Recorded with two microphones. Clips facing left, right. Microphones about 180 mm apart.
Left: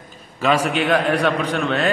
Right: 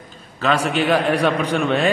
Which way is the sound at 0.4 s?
5° left (ahead or behind).